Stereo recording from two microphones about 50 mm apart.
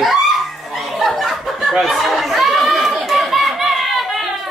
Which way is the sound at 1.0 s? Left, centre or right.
Centre.